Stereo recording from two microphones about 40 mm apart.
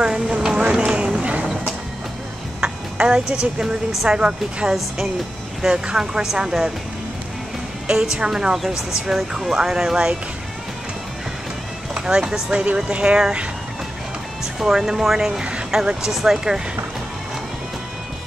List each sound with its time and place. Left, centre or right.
0.0 s a sound: centre
1.2 s music: right
2.6 s a sound: right
4.1 s speech: right
5.9 s speech: centre
7.8 s speech: right
12.0 s speech: centre
12.9 s speech: right
14.4 s speech: centre
16.1 s speech: centre